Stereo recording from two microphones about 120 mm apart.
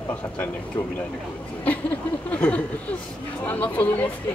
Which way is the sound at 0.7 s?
30° left (ahead or behind).